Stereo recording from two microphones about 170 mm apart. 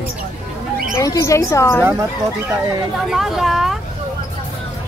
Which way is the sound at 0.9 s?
20° left (ahead or behind).